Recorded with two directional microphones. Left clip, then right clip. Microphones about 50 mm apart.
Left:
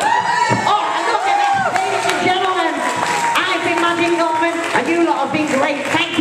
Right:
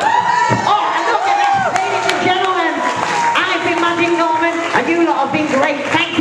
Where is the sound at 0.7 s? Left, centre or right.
Right.